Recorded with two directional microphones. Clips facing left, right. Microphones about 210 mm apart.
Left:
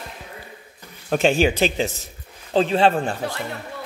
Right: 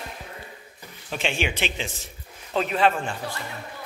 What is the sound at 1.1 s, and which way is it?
Speech, 40° left (ahead or behind).